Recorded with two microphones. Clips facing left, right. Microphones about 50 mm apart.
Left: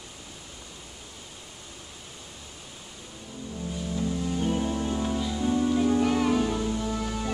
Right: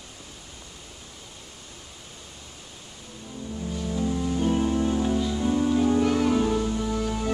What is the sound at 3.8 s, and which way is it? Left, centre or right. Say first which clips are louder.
Music: right 3 dB; centre.